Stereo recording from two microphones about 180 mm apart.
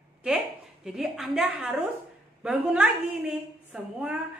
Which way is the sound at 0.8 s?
Centre (ahead or behind).